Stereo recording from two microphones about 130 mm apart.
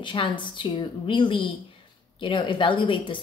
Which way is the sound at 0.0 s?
40° left (ahead or behind).